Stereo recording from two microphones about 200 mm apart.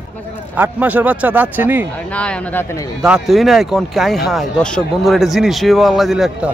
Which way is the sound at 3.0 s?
Centre (ahead or behind).